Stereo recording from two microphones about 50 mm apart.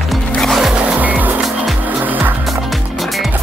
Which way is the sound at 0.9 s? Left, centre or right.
Right.